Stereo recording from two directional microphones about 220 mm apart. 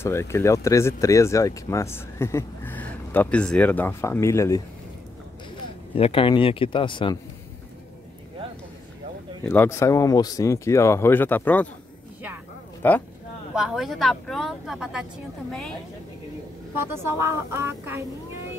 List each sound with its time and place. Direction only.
0.0 s speech: 10° left (ahead or behind)
5.9 s speech: 25° left (ahead or behind)
9.4 s speech: 10° left (ahead or behind)
12.8 s speech: 10° left (ahead or behind)
16.7 s speech: 10° right (ahead or behind)